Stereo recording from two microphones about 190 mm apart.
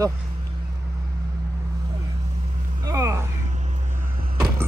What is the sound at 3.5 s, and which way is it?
Vehicle, 40° right (ahead or behind).